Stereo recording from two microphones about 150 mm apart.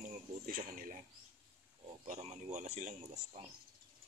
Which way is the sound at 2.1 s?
50° right (ahead or behind).